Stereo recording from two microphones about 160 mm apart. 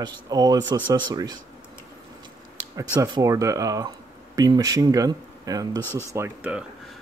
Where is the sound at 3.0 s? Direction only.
20° right (ahead or behind).